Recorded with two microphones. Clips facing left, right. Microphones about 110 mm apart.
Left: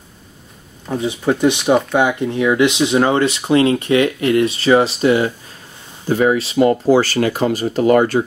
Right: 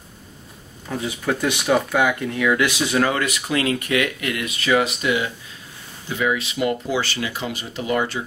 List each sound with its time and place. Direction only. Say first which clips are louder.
0.8 s speech: left 6 dB; 25° left (ahead or behind); by 8.2 s 50° left (ahead or behind)